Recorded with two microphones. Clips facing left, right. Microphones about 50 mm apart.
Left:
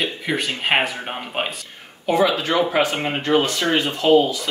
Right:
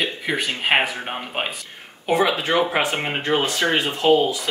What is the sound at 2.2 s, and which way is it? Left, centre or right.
Speech, right.